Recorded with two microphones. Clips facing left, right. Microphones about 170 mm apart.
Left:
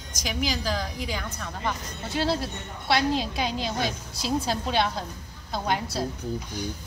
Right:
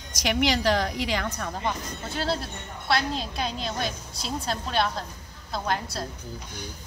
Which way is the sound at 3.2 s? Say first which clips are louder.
Left 3 dB; centre (ahead or behind).